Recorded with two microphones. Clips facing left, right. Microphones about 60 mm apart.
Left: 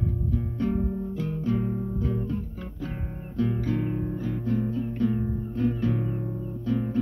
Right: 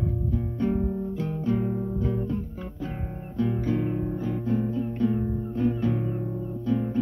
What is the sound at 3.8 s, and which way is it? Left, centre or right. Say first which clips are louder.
Music: right 1 dB; centre.